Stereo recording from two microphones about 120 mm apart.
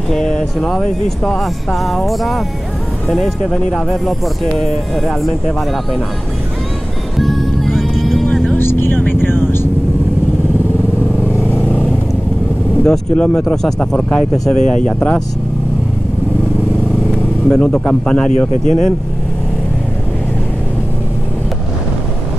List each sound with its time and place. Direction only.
0.1 s speech: 5° left (ahead or behind)
7.2 s music: centre (ahead or behind)
8.5 s vehicle: 20° left (ahead or behind)
11.4 s vehicle: 15° left (ahead or behind)
12.8 s speech: 5° left (ahead or behind)
17.5 s speech: 10° left (ahead or behind)
18.5 s speech: 85° left